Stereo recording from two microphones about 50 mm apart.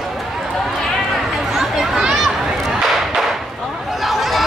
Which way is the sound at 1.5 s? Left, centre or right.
Centre.